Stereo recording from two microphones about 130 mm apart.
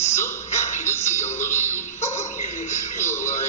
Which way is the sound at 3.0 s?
20° left (ahead or behind).